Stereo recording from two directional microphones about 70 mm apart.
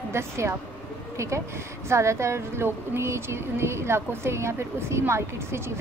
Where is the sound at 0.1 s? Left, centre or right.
Right.